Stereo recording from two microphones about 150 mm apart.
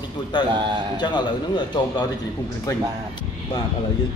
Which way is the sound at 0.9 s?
30° left (ahead or behind).